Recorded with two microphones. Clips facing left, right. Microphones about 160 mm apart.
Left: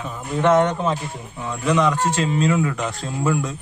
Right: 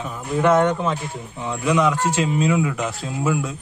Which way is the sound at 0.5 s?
Centre (ahead or behind).